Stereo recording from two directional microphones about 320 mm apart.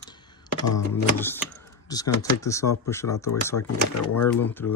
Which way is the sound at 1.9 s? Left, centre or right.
Centre.